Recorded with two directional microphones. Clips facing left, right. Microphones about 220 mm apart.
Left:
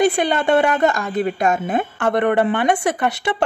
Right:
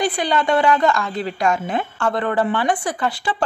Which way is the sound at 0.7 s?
20° left (ahead or behind).